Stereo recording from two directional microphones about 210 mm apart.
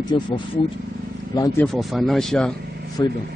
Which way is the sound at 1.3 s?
15° left (ahead or behind).